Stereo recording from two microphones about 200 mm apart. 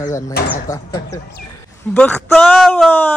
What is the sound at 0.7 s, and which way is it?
Speech, 40° left (ahead or behind).